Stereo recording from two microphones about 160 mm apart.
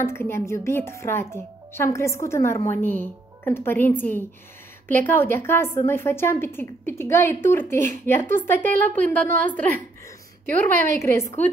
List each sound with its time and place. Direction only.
0.0 s a woman's voice: 15° left (ahead or behind)
10.5 s a woman's voice: 15° left (ahead or behind)